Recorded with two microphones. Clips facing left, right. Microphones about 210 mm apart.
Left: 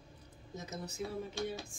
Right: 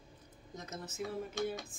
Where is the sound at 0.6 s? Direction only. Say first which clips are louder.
Left 1 dB; centre (ahead or behind).